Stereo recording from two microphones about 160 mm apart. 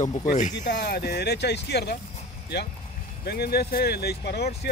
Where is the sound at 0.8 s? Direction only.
80° left.